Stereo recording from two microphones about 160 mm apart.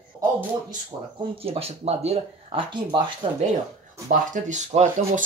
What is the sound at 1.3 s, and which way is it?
Speech, 40° right (ahead or behind).